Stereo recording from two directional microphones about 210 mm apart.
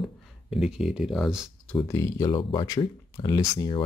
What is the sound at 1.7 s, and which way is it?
Speech, 15° left (ahead or behind).